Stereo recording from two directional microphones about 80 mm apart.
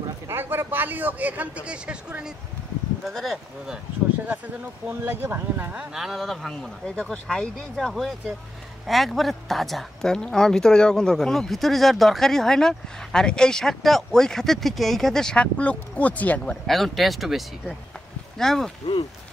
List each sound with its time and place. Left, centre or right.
0.3 s a man's voice: right; by 2.3 s centre
3.0 s speech: centre
4.8 s a man's voice: right
5.9 s speech: centre
16.6 s speech: centre